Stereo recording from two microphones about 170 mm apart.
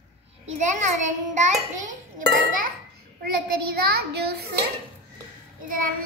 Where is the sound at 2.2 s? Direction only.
55° right (ahead or behind).